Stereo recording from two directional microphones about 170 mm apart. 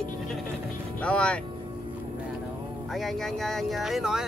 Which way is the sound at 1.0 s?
5° left (ahead or behind).